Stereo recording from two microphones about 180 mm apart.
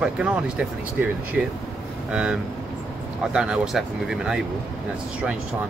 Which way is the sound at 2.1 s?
5° right (ahead or behind).